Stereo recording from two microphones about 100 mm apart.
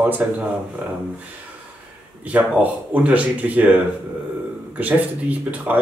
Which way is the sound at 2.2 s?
15° right (ahead or behind).